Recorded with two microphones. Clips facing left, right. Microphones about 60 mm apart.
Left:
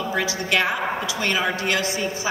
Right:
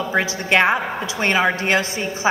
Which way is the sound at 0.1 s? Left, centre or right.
Right.